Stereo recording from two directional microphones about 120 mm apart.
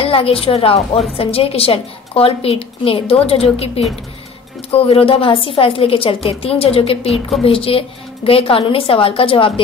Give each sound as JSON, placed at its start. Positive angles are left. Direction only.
{"t": 0.0, "sound": "a woman's voice", "side_deg": 50}
{"t": 7.1, "sound": "a woman's voice", "side_deg": 0}
{"t": 7.4, "sound": "a woman's voice", "side_deg": 50}